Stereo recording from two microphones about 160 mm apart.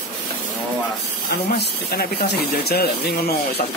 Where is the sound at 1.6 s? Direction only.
75° left (ahead or behind).